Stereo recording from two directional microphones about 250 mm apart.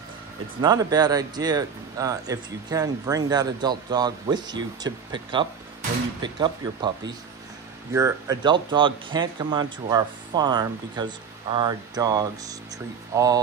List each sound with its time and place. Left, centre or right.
0.6 s speech: centre
7.9 s speech: centre